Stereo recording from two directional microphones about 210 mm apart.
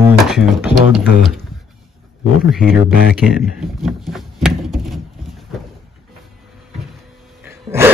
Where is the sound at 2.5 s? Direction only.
Centre (ahead or behind).